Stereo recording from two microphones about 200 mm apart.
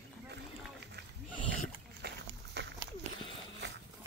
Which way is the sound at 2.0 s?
60° right (ahead or behind).